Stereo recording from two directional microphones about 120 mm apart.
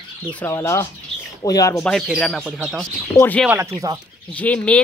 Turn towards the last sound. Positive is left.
turn(degrees=10)  # may be behind; listen again after turning